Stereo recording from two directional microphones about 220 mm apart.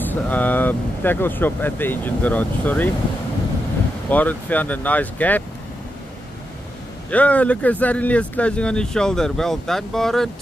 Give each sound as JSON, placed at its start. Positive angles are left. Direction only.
{"t": 0.0, "sound": "speech", "side_deg": 10}
{"t": 4.1, "sound": "speech", "side_deg": 5}
{"t": 7.1, "sound": "speech", "side_deg": 5}